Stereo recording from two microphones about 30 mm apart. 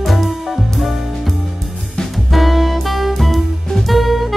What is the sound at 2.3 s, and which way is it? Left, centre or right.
Music, centre.